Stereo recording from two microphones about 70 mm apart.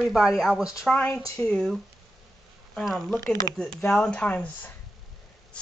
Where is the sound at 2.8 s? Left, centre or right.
Centre.